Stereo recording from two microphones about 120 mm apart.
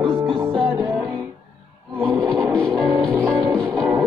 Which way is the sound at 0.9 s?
15° right (ahead or behind).